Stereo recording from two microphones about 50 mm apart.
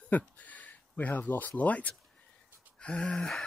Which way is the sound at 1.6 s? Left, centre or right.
Left.